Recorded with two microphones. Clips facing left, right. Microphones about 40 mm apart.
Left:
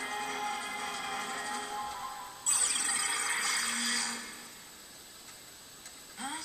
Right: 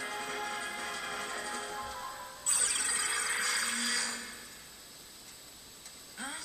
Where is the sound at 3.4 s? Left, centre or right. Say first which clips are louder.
Even; right.